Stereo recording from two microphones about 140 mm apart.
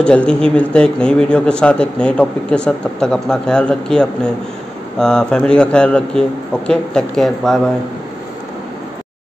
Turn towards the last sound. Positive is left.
turn(degrees=0)  # may be behind; listen again after turning